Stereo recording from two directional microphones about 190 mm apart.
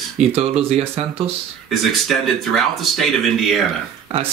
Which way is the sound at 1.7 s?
Centre (ahead or behind).